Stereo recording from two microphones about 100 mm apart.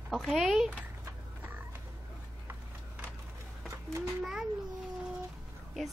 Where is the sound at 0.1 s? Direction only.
Centre (ahead or behind).